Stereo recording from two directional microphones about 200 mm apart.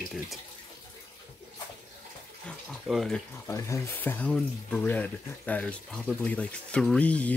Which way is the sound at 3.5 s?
15° left (ahead or behind).